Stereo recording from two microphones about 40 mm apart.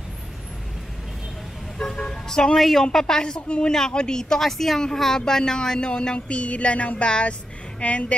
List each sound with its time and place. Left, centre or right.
2.0 s vehicle: centre
2.8 s speech: centre; by 3.7 s left
3.7 s a woman's voice: centre; by 8.1 s left